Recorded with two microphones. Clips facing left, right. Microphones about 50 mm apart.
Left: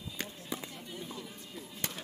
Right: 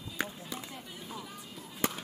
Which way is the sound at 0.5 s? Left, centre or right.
Centre.